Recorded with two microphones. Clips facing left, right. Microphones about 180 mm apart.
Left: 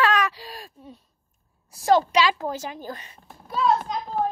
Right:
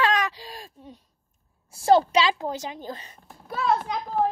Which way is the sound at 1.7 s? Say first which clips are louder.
Right 1 dB; 30° right (ahead or behind).